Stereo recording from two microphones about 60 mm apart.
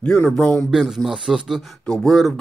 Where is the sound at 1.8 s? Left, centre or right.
Centre.